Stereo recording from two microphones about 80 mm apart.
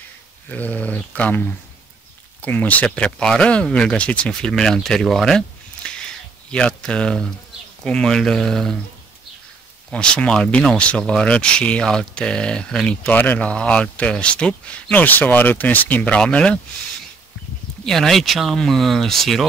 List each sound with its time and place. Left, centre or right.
0.5 s speech: centre
9.8 s speech: centre
17.8 s speech: centre